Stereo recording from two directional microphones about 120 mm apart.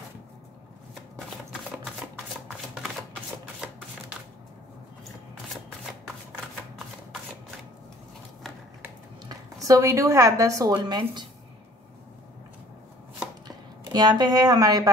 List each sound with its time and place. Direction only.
9.2 s speech: 30° right (ahead or behind)
13.8 s speech: 35° right (ahead or behind)